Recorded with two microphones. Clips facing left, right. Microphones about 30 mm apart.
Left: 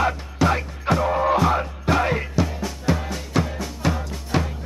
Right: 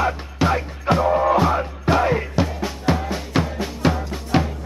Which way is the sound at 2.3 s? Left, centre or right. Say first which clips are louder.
Right 2 dB; right.